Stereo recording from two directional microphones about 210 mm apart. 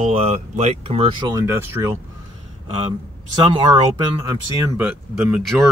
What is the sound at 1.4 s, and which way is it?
Speech, 10° right (ahead or behind).